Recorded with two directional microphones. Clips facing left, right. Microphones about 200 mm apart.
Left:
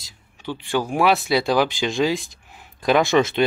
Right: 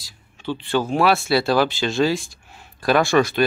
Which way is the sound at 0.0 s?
15° left (ahead or behind).